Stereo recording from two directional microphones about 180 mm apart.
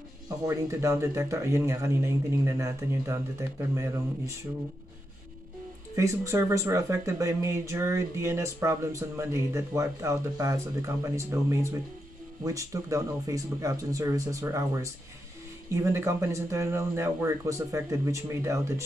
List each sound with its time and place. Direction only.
0.5 s speech: 15° right (ahead or behind)
5.9 s speech: 15° right (ahead or behind)